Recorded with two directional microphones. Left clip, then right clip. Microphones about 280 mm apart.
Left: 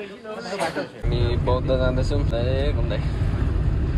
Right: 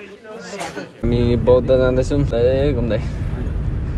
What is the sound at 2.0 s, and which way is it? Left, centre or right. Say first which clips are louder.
Speech: right 8 dB; right.